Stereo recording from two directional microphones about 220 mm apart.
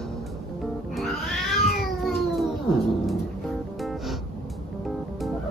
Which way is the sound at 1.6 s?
Centre (ahead or behind).